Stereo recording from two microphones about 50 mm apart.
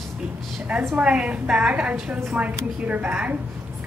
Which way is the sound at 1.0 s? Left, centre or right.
Right.